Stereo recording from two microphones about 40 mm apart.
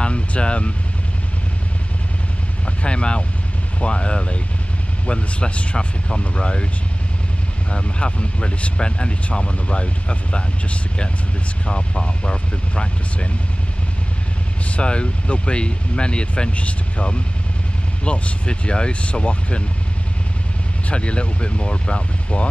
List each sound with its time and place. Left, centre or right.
0.0 s vehicle: left
2.6 s speech: left
7.7 s speech: left
14.8 s speech: left
20.9 s speech: left